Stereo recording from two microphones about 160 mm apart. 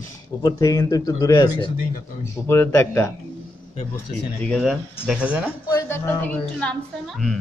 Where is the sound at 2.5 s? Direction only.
15° left (ahead or behind).